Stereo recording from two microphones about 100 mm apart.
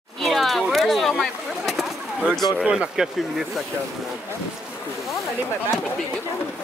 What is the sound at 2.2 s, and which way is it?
Speech, 5° left (ahead or behind).